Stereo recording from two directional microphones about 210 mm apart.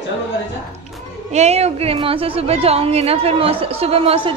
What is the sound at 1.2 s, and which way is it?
A woman's voice, 30° right (ahead or behind).